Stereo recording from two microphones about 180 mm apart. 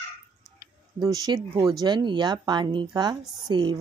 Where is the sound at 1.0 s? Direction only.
20° right (ahead or behind).